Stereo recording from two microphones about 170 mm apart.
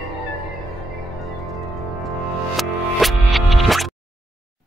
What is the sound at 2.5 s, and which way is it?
Music, centre (ahead or behind).